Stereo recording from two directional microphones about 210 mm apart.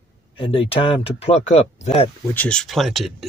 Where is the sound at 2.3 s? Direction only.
5° left (ahead or behind).